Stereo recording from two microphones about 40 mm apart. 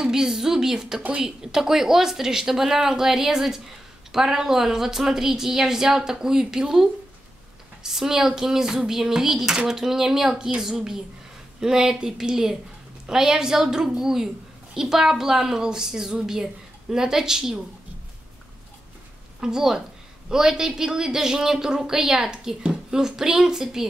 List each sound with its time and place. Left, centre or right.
0.0 s a woman's voice: centre
19.4 s a woman's voice: centre